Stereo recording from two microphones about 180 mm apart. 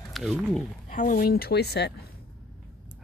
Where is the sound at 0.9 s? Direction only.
45° left (ahead or behind); by 1.9 s 65° left (ahead or behind).